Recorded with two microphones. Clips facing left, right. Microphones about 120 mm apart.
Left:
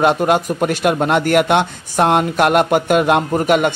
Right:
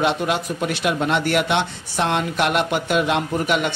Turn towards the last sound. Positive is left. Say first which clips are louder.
# left 6 dB
turn(degrees=45)  # may be behind; listen again after turning